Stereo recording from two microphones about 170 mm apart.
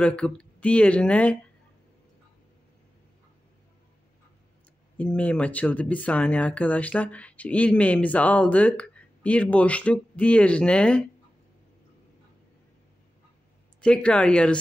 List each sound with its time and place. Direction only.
0.0 s speech: 5° left (ahead or behind)
4.9 s speech: 10° left (ahead or behind)
13.7 s speech: 5° left (ahead or behind)